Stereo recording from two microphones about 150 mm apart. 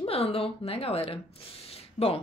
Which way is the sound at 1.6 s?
40° left (ahead or behind).